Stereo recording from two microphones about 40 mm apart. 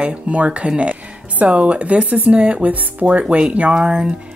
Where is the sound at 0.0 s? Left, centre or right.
Right.